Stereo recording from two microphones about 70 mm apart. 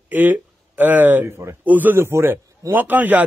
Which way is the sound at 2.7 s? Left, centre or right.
Right.